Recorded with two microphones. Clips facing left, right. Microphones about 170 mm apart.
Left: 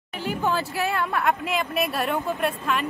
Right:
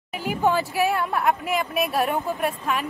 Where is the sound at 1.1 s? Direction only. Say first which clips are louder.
Right 1 dB; 20° right (ahead or behind).